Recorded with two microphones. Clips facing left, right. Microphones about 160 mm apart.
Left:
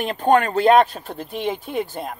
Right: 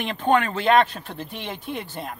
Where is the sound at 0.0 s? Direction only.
40° left (ahead or behind).